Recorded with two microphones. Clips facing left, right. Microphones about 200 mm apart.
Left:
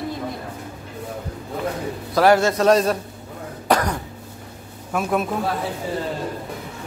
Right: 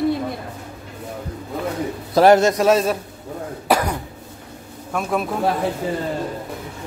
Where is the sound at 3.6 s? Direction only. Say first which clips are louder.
Even; 10° right (ahead or behind).